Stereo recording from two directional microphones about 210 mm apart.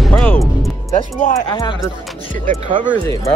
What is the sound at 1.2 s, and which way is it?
Speech, 35° left (ahead or behind).